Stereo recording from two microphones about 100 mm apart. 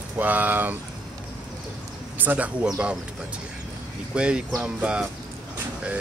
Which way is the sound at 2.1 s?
15° right (ahead or behind).